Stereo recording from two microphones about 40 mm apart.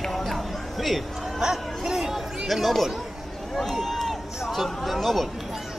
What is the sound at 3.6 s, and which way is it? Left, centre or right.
Run, centre.